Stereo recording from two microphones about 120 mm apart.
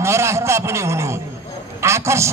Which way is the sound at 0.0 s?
25° right (ahead or behind).